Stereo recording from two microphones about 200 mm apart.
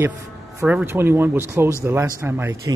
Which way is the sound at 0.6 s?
10° right (ahead or behind).